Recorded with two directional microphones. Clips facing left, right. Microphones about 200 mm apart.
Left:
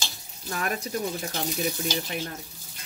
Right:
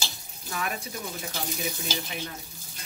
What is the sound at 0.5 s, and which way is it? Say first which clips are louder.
Speech: left 3 dB; 45° left (ahead or behind).